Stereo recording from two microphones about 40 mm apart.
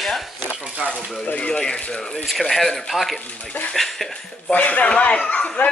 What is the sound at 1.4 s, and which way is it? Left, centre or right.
Speech, left.